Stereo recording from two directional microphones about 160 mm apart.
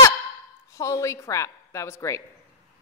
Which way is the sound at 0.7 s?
20° left (ahead or behind).